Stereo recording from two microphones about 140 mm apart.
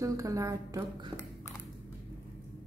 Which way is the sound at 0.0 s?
20° right (ahead or behind).